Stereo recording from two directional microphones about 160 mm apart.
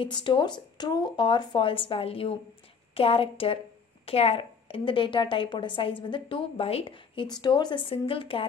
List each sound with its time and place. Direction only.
0.0 s a woman's voice: 30° left (ahead or behind)